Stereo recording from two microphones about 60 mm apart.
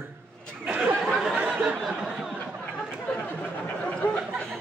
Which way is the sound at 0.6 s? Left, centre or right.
Right.